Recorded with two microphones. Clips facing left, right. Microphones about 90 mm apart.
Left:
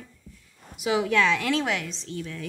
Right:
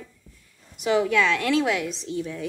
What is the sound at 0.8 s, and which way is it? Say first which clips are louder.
Speech: right 2 dB; 5° left (ahead or behind).